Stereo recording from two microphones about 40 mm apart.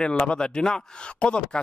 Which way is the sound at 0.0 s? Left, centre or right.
Left.